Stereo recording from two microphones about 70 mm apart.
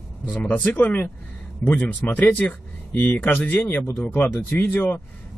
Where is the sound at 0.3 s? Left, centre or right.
Left.